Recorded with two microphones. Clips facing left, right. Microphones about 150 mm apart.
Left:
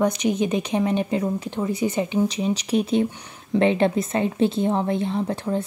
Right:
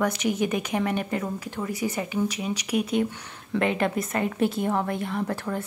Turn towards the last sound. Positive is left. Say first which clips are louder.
# left 4 dB
turn(degrees=20)  # may be behind; listen again after turning